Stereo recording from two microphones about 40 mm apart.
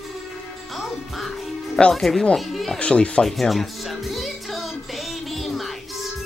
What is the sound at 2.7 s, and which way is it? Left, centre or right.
Speech, left.